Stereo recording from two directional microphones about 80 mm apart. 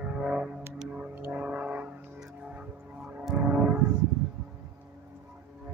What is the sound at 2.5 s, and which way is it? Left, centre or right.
Music, centre.